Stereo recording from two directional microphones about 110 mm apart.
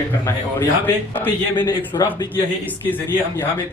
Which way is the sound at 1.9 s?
30° left (ahead or behind).